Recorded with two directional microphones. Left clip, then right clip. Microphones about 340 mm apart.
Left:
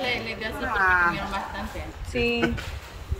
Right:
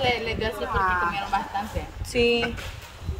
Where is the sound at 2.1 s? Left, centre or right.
Centre.